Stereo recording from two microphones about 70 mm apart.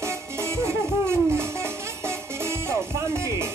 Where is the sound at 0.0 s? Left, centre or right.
Right.